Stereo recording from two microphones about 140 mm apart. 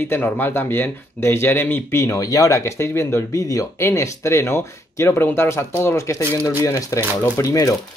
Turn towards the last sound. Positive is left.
turn(degrees=20)  # may be behind; listen again after turning